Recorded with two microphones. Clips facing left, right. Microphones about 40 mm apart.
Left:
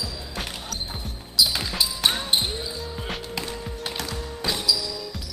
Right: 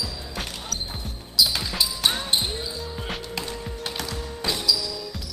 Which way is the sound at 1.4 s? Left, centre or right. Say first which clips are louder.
Even; centre.